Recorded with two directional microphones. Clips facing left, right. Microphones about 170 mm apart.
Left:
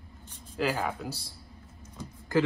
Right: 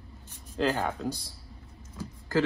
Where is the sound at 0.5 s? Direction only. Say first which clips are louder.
Right 2 dB; 5° left (ahead or behind).